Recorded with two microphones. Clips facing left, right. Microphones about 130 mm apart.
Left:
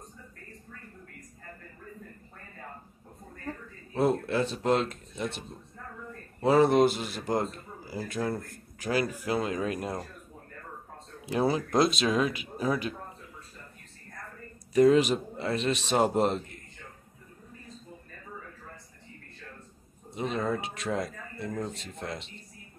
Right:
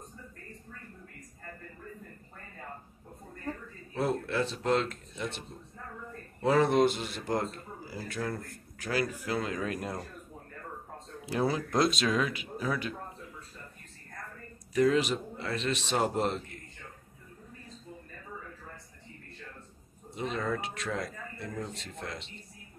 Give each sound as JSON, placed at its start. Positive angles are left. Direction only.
{"t": 3.9, "sound": "speech", "side_deg": 20}
{"t": 6.4, "sound": "speech", "side_deg": 15}
{"t": 11.2, "sound": "speech", "side_deg": 15}
{"t": 12.1, "sound": "a man's voice", "side_deg": 25}
{"t": 14.7, "sound": "a man's voice", "side_deg": 25}
{"t": 20.2, "sound": "a man's voice", "side_deg": 25}